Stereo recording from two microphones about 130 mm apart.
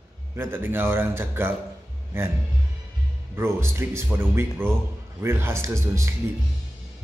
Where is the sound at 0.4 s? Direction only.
15° right (ahead or behind).